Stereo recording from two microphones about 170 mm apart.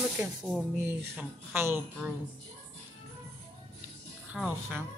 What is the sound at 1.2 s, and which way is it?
Speech, 15° right (ahead or behind).